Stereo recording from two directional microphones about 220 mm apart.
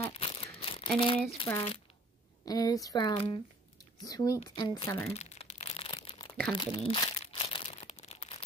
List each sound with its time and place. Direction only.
0.1 s crumpling: 25° left (ahead or behind)
0.9 s speech: 25° left (ahead or behind)
5.1 s crumpling: 30° left (ahead or behind)